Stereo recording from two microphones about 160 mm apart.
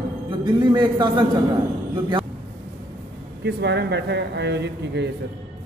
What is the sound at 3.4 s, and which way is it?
A man's voice, 90° right.